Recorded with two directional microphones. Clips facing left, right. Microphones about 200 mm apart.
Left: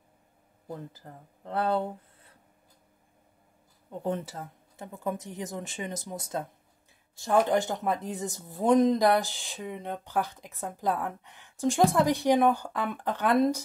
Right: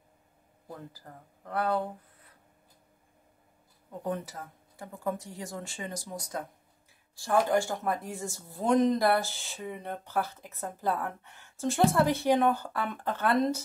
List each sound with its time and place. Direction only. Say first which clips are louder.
0.7 s speech: left 3 dB; 25° left (ahead or behind)
4.0 s speech: left 2 dB; 25° left (ahead or behind)